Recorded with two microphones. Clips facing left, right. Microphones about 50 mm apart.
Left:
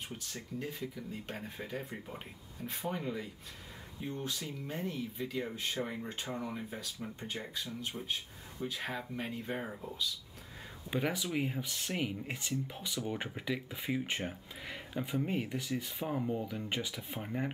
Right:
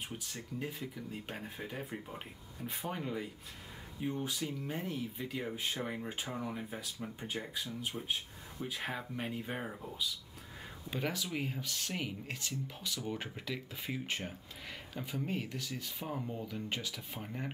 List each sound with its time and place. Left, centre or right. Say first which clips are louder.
0.3 s speech: left 2 dB; centre
10.9 s speech: left 3 dB; centre